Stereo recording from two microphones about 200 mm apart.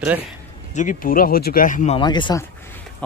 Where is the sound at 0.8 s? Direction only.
45° left (ahead or behind).